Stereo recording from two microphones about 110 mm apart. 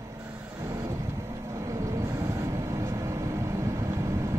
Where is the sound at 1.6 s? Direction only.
30° right (ahead or behind).